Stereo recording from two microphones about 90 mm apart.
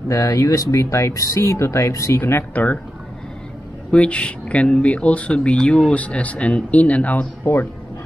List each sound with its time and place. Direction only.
0.1 s speech: 40° left (ahead or behind); by 2.8 s 20° left (ahead or behind)
3.9 s speech: 15° left (ahead or behind)